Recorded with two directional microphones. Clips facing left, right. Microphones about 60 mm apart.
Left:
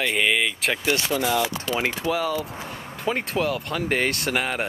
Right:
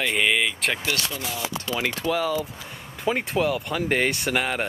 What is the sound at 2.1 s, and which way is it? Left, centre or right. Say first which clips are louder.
Speech: even; centre.